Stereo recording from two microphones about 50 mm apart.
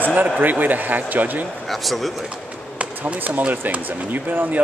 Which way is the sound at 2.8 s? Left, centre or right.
Right.